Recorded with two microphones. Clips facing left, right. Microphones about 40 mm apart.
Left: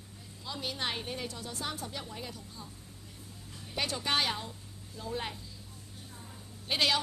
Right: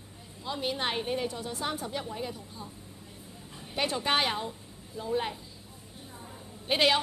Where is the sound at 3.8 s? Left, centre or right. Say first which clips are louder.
Right 4 dB; right.